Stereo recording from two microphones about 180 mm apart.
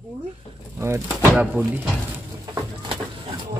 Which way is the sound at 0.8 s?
15° right (ahead or behind).